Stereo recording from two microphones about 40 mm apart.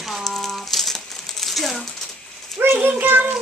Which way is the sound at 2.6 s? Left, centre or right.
Right.